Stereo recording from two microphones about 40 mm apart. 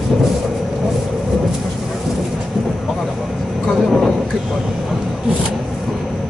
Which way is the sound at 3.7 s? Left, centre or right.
Centre.